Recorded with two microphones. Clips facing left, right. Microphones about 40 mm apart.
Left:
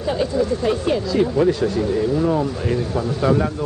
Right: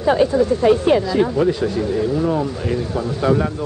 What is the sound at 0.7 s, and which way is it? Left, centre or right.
Speech, right.